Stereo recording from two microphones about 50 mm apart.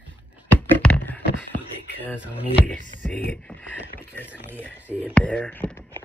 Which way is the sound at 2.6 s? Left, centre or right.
Left.